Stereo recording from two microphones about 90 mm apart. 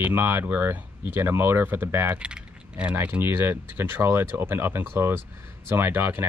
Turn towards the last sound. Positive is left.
turn(degrees=-25)  # may be behind; listen again after turning